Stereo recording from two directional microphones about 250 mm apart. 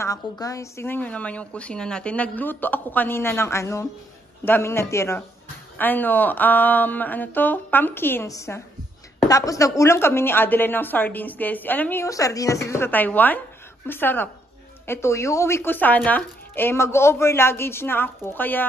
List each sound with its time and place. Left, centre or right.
0.0 s a woman's voice: centre